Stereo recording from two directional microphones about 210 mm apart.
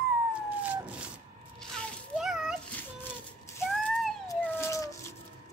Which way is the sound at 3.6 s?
Centre (ahead or behind).